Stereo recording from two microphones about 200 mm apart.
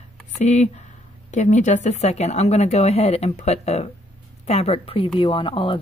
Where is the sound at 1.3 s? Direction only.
35° left (ahead or behind).